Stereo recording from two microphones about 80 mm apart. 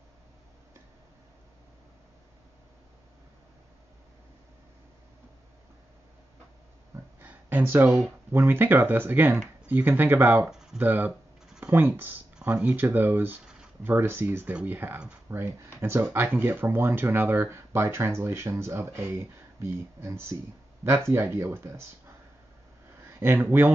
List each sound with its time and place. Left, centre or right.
7.2 s a sound: right
8.3 s speech: right
10.5 s a sound: centre
10.8 s speech: right
14.5 s speech: centre
15.2 s speech: right
23.0 s speech: right